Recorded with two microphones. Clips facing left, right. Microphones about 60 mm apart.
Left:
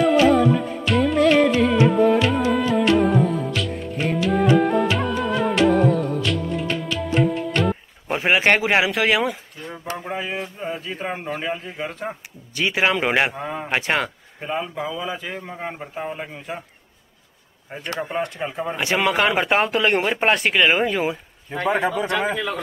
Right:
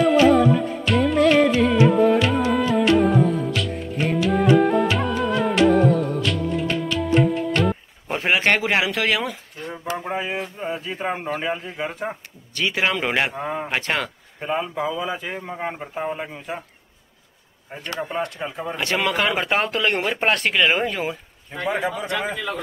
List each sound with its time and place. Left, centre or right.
0.0 s music: centre
8.1 s speech: centre
9.6 s a man's voice: centre
12.5 s speech: centre
13.3 s a man's voice: centre
13.7 s speech: centre
14.4 s a man's voice: centre
18.0 s speech: centre
21.5 s a man's voice: left